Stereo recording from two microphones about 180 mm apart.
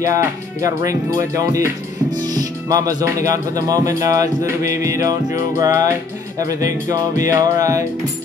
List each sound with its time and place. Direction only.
0.0 s speech: 20° right (ahead or behind)